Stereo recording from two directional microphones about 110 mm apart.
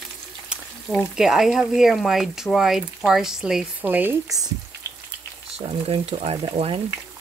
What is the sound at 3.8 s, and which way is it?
Frying, 15° right (ahead or behind).